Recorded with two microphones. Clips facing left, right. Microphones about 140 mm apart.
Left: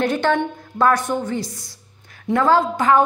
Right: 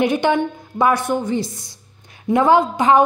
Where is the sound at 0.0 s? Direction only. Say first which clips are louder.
Right 2 dB; 15° right (ahead or behind).